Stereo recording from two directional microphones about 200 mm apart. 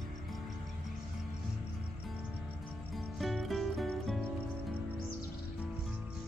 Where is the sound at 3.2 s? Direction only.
Centre (ahead or behind).